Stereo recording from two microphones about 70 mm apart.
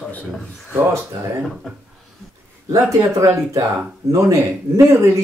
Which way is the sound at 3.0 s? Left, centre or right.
Right.